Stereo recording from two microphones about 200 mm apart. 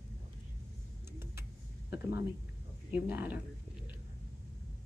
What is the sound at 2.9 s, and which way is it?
Speech, 10° right (ahead or behind).